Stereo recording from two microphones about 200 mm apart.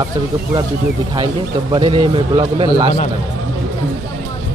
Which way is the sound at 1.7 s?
25° right (ahead or behind).